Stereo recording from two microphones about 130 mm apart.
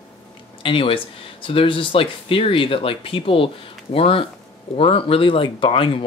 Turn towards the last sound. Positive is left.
turn(degrees=40)  # may be behind; listen again after turning